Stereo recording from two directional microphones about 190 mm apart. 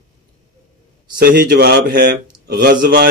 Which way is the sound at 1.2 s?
55° right (ahead or behind).